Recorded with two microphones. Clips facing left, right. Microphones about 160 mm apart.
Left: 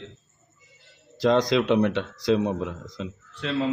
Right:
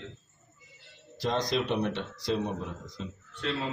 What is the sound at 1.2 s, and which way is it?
A man's voice, 90° left.